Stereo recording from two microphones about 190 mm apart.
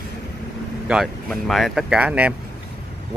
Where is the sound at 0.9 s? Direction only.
Centre (ahead or behind).